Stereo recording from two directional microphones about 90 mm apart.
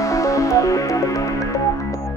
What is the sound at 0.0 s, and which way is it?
Music, 35° left (ahead or behind).